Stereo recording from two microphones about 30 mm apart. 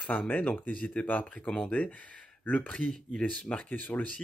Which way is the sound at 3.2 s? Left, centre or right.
Left.